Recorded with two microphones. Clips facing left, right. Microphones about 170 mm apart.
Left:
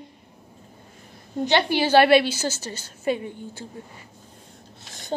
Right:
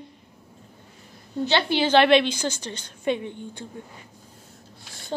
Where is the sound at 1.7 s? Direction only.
10° left (ahead or behind).